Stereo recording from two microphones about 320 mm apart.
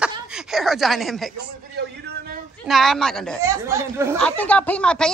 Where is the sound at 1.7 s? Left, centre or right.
Right.